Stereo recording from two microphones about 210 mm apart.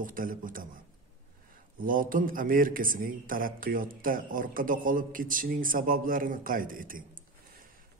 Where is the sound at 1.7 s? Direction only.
40° right (ahead or behind).